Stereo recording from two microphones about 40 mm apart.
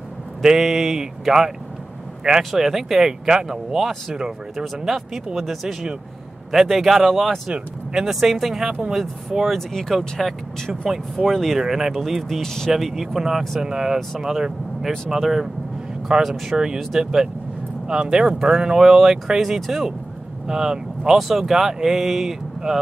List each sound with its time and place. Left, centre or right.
0.4 s speech: centre
2.5 s speech: centre
9.6 s speech: centre
11.6 s speech: centre
12.2 s speech: centre
12.7 s speech: centre
15.0 s speech: centre
16.5 s speech: centre
21.2 s speech: centre